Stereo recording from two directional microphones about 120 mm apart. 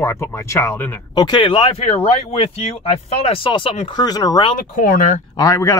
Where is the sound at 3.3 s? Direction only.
45° left (ahead or behind).